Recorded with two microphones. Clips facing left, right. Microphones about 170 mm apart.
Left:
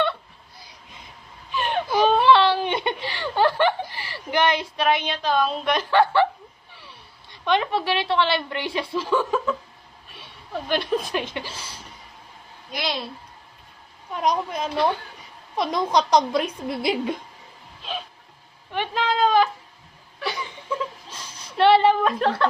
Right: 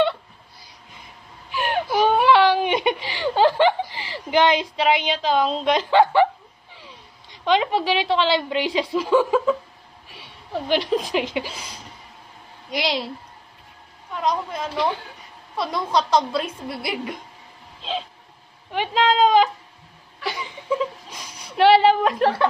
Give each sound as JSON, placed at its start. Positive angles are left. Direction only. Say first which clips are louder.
{"t": 1.5, "sound": "whimper", "louder": "right 1 dB", "side_deg": -10}
{"t": 6.7, "sound": "a woman's voice", "louder": "right 2 dB", "side_deg": -15}
{"t": 11.0, "sound": "speech", "louder": "right 4 dB", "side_deg": -15}
{"t": 14.1, "sound": "speech", "louder": "left 1 dB", "side_deg": 20}
{"t": 18.7, "sound": "a woman's voice", "louder": "right 4 dB", "side_deg": -15}
{"t": 19.1, "sound": "cat", "louder": "right 1 dB", "side_deg": -15}
{"t": 20.7, "sound": "a sound", "louder": "right 5 dB", "side_deg": -15}